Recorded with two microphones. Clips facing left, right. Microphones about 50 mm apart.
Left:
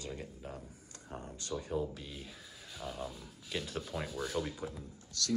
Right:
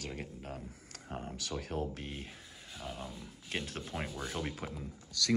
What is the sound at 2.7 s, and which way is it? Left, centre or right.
Speech, centre.